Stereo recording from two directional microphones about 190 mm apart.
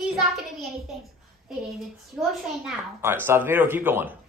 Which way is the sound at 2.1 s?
Centre (ahead or behind).